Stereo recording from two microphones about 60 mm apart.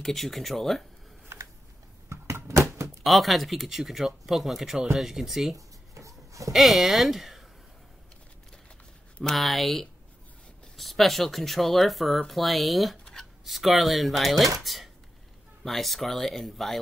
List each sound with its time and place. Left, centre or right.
0.0 s speech: centre
2.0 s a sound: right
3.0 s speech: centre
5.9 s a sound: right
6.5 s speech: centre
9.3 s speech: centre